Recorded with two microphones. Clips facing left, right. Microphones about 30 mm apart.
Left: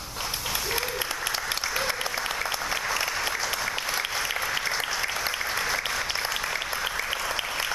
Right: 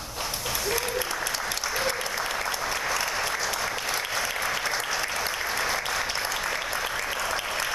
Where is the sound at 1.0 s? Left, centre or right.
Centre.